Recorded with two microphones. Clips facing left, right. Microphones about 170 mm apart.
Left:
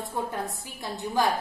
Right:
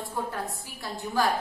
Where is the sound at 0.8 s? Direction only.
20° left (ahead or behind).